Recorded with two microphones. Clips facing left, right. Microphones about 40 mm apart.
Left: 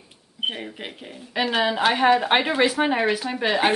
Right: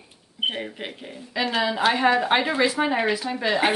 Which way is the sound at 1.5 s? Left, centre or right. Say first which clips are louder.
Left 1 dB; left.